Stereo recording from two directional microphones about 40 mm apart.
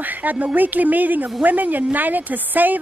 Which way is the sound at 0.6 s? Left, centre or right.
Right.